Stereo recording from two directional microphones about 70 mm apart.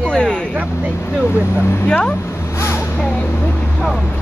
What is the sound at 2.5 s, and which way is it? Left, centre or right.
Vehicle, left.